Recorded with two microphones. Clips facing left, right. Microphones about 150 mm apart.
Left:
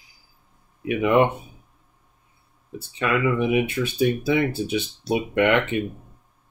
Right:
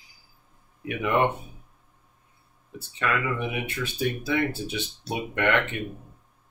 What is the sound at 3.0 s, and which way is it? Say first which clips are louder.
Speech: left 6 dB; 15° left (ahead or behind).